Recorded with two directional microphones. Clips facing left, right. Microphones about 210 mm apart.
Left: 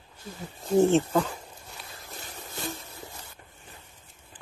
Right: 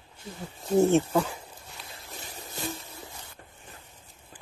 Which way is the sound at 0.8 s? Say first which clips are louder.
Even; 10° right (ahead or behind).